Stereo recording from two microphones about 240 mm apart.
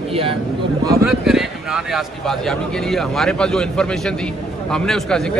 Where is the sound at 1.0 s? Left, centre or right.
Centre.